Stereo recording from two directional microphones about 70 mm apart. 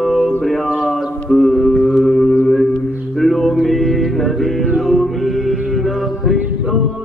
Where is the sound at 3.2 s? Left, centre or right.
Centre.